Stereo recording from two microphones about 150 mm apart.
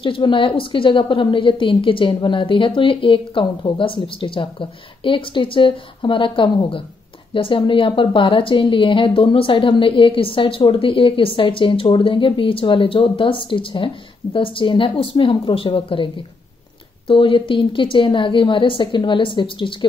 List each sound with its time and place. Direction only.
0.0 s a woman's voice: 35° left (ahead or behind)